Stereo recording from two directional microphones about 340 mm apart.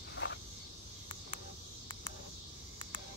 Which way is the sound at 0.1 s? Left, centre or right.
Left.